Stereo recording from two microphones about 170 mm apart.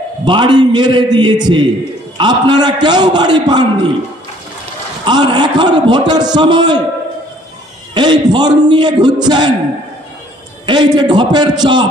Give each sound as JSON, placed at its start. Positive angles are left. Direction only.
{"t": 0.2, "sound": "a man's voice", "side_deg": -25}
{"t": 5.0, "sound": "a man's voice", "side_deg": -25}
{"t": 7.9, "sound": "a man's voice", "side_deg": -25}
{"t": 10.7, "sound": "a man's voice", "side_deg": -25}